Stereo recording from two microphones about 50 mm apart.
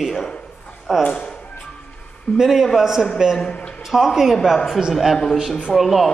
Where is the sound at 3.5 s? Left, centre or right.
Left.